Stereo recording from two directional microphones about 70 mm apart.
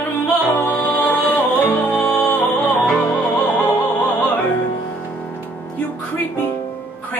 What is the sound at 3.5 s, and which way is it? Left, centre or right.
Opera, left.